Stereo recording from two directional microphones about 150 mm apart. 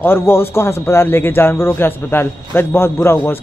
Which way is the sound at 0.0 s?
15° left (ahead or behind).